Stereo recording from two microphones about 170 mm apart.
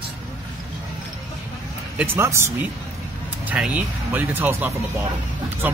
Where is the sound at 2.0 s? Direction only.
10° right (ahead or behind).